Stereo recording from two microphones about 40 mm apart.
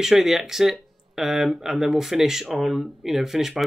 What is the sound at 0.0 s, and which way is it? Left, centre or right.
Speech, centre.